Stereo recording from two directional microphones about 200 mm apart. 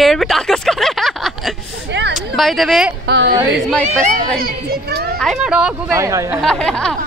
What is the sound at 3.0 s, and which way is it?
Speech, 60° right (ahead or behind).